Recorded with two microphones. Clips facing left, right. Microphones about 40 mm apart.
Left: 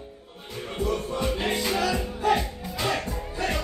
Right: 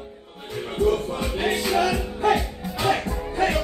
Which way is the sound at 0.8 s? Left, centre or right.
Right.